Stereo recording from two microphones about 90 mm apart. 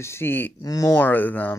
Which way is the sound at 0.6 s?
40° left (ahead or behind).